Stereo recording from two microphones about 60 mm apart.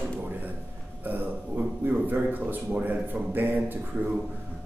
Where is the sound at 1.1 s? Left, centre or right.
Right.